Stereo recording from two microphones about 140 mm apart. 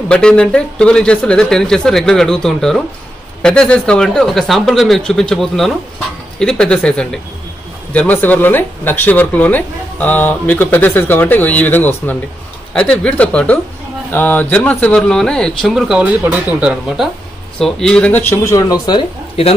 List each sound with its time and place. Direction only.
0.1 s speech: 5° left (ahead or behind)
18.4 s speech: 25° left (ahead or behind)